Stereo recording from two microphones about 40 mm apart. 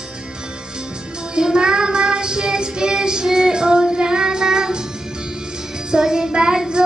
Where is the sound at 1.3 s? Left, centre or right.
Centre.